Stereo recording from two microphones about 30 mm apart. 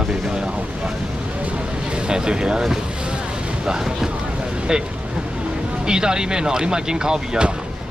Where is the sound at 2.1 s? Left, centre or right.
Right.